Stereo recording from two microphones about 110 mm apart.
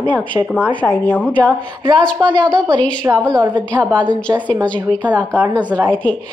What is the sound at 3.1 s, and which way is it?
Speech, 20° right (ahead or behind).